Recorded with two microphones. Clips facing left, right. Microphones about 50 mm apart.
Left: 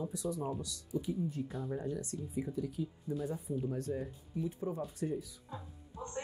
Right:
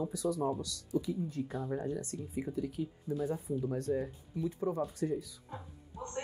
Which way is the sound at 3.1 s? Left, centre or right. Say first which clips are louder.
Right 4 dB; right.